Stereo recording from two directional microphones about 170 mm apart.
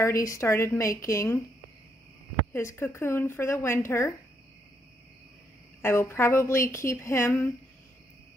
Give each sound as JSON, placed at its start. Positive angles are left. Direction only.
{"t": 0.0, "sound": "a woman's voice", "side_deg": 20}
{"t": 2.5, "sound": "a woman's voice", "side_deg": 15}
{"t": 5.8, "sound": "a woman's voice", "side_deg": 15}